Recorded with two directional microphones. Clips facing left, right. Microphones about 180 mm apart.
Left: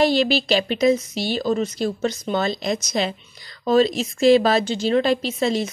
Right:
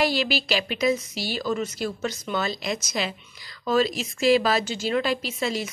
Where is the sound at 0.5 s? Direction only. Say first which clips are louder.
Left 4 dB; 35° left (ahead or behind).